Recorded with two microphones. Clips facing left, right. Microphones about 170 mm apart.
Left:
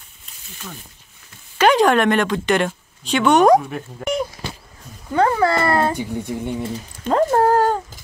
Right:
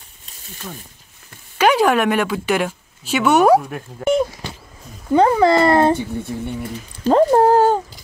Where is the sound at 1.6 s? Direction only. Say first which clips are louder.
Even; 10° right (ahead or behind).